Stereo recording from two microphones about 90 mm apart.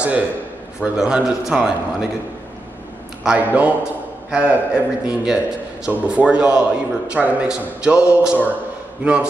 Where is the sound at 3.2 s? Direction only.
15° right (ahead or behind).